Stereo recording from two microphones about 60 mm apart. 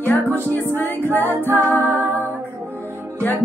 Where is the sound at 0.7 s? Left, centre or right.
Left.